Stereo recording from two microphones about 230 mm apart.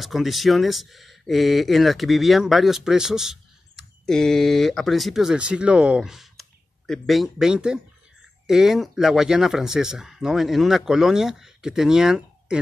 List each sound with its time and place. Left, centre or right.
0.0 s speech: centre